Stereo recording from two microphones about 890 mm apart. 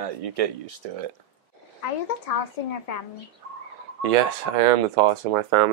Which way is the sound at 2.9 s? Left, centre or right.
Left.